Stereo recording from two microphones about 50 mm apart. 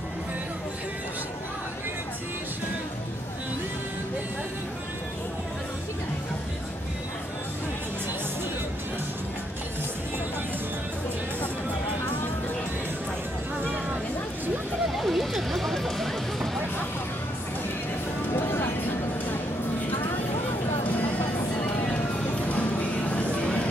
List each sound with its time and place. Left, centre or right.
15.0 s music: centre
18.3 s vehicle: left
20.8 s a sound: left
21.5 s music: left